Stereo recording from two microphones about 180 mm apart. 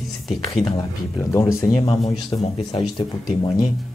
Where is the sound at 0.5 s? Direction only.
30° left (ahead or behind).